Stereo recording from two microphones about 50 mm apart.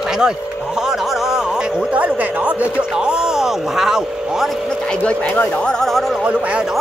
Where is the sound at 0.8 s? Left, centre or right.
Centre.